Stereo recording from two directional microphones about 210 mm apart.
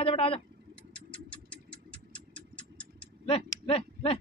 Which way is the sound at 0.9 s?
5° left (ahead or behind).